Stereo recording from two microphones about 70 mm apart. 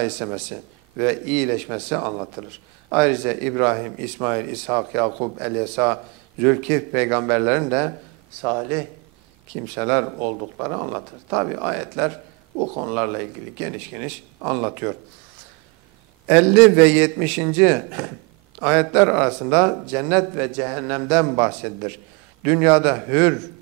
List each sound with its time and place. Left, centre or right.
0.0 s a man's voice: centre
16.3 s a man's voice: centre